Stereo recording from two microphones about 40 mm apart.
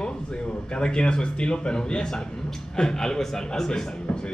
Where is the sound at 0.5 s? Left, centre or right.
Left.